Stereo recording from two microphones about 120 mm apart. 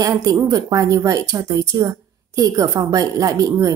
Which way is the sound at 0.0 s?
30° right (ahead or behind).